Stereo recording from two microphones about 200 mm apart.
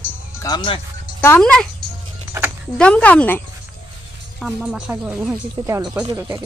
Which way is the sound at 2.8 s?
5° left (ahead or behind).